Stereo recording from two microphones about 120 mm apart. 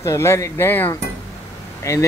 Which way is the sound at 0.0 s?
25° left (ahead or behind).